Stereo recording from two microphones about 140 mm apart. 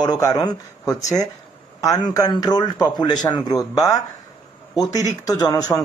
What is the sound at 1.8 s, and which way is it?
Speech, 25° left (ahead or behind).